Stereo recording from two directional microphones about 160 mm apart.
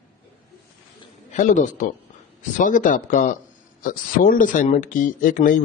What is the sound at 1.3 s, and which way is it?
Speech, 50° left (ahead or behind).